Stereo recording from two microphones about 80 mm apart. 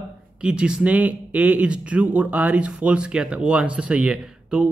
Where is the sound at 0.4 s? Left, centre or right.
Centre.